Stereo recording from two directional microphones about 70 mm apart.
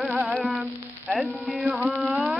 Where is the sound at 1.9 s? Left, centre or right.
Centre.